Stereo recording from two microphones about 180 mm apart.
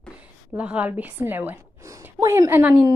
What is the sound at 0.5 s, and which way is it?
A woman's voice, 10° right (ahead or behind).